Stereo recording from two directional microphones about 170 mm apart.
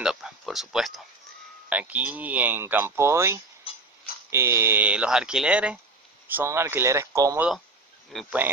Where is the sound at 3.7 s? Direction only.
35° left (ahead or behind).